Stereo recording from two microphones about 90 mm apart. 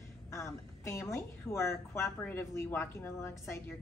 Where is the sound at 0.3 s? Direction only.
35° left (ahead or behind).